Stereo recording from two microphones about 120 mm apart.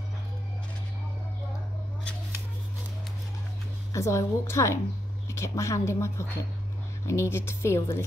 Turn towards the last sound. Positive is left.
turn(degrees=20)  # may be behind; listen again after turning